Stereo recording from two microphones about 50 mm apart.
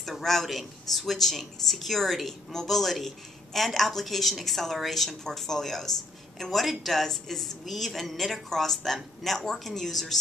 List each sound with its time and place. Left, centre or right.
0.0 s speech: centre